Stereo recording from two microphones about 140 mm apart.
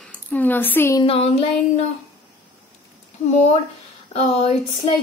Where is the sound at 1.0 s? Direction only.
45° left (ahead or behind).